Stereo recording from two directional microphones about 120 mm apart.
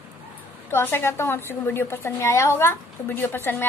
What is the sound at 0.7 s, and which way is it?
A woman's voice, 20° left (ahead or behind).